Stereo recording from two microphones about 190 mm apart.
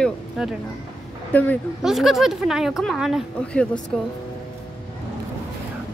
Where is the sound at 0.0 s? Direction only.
Centre (ahead or behind).